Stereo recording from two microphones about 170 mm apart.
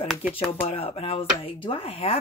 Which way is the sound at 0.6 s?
35° left (ahead or behind).